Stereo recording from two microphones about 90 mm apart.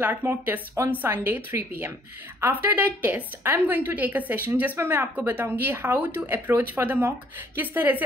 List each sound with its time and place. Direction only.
0.0 s speech: 20° right (ahead or behind)